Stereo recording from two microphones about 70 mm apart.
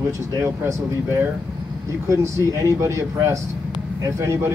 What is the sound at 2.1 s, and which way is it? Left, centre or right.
Speech, right.